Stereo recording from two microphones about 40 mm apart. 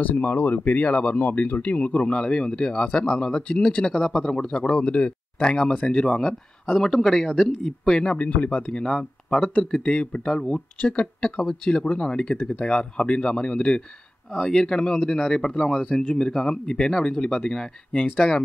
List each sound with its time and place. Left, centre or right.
0.0 s speech: left
2.0 s speech: left
4.6 s speech: left
6.7 s speech: centre
8.2 s speech: left
8.5 s speech: left
14.3 s speech: centre; by 18.4 s left